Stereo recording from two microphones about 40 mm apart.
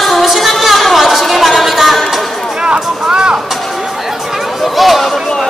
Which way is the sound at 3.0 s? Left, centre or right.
Right.